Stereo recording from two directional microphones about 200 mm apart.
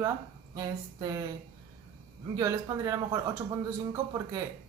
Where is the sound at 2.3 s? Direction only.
15° right (ahead or behind).